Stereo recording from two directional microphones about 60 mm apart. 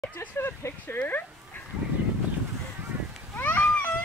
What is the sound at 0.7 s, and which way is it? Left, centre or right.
Speech, left.